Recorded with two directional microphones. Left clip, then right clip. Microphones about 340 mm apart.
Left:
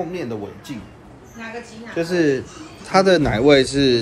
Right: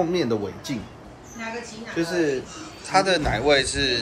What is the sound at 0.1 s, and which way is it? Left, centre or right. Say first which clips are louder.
Speech: right 4 dB; centre.